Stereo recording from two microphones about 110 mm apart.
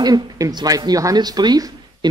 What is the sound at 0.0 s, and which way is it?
Speech, 35° right (ahead or behind).